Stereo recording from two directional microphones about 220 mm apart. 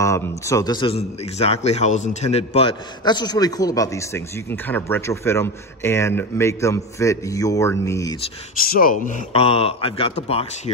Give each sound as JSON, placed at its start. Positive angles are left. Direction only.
{"t": 0.0, "sound": "a man's voice", "side_deg": 15}
{"t": 8.7, "sound": "speech", "side_deg": 40}